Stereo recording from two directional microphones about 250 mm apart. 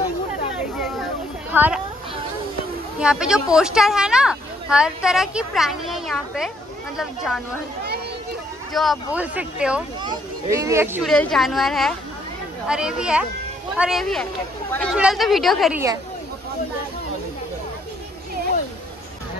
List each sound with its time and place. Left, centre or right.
0.6 s a sound: centre
3.0 s speech: centre
8.7 s speech: centre
10.0 s speech: centre